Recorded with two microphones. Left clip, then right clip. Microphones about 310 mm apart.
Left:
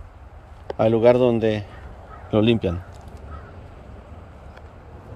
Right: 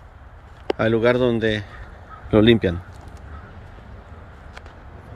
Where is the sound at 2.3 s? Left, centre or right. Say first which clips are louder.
Right 4 dB; right.